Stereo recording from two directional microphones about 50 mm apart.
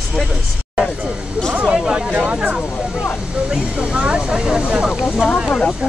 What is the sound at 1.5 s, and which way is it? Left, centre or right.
Speech, centre.